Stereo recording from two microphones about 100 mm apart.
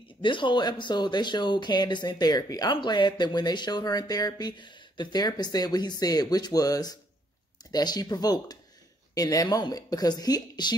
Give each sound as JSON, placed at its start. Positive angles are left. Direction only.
{"t": 0.2, "sound": "speech", "side_deg": 55}